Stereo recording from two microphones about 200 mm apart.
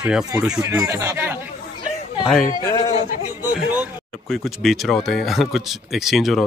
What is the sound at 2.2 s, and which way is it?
Speech, centre (ahead or behind).